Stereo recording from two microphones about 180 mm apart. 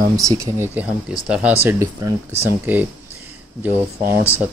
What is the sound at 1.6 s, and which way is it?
Speech, 15° right (ahead or behind).